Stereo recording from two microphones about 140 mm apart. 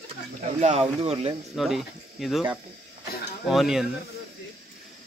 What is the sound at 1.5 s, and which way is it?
Speech, centre (ahead or behind).